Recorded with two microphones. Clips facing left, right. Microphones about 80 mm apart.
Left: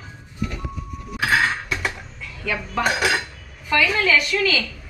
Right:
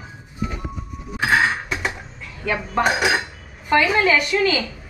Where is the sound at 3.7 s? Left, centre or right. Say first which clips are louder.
Right 3 dB; right.